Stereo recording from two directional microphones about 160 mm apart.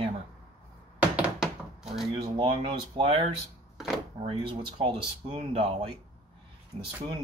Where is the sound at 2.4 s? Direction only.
35° right (ahead or behind).